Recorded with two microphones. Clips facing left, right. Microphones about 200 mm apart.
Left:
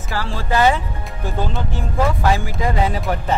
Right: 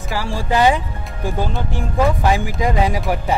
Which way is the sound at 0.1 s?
15° right (ahead or behind).